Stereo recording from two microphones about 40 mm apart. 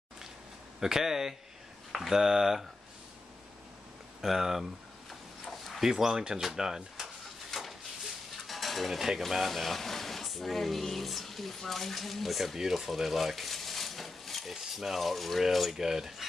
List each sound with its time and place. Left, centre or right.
0.7 s speech: centre
4.2 s speech: centre
8.5 s stir: centre
9.2 s speech: centre